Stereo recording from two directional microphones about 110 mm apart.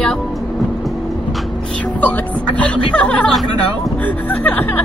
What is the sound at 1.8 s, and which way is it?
Music, 15° left (ahead or behind).